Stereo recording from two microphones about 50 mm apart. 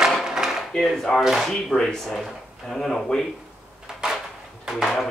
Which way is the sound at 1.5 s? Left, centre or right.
Centre.